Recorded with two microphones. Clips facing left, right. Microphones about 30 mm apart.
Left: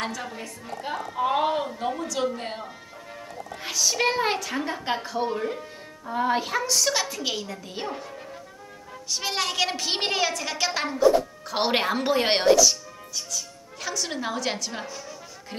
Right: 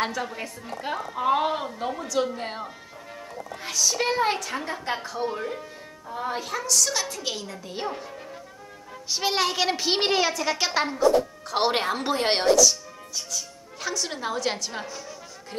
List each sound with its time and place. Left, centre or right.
0.7 s a woman's voice: centre
3.6 s a woman's voice: centre
6.0 s a woman's voice: left; by 7.1 s centre
7.1 s a woman's voice: centre
9.1 s a woman's voice: centre
11.0 s a woman's voice: centre
13.1 s a woman's voice: centre